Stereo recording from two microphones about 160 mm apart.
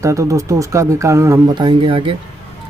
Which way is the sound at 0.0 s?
20° right (ahead or behind).